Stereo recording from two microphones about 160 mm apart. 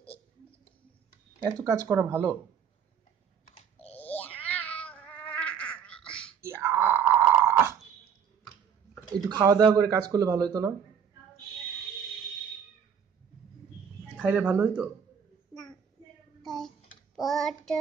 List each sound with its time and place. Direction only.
1.4 s speech: 15° right (ahead or behind)
3.9 s cat: 10° left (ahead or behind)
6.4 s a sound: 15° right (ahead or behind)
9.1 s speech: 25° right (ahead or behind)
14.1 s speech: 10° right (ahead or behind)
16.4 s child singing: centre (ahead or behind)